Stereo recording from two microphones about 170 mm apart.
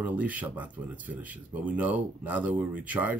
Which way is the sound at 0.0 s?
10° right (ahead or behind).